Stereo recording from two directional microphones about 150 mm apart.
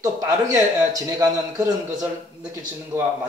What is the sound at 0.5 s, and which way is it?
Speech, 25° right (ahead or behind).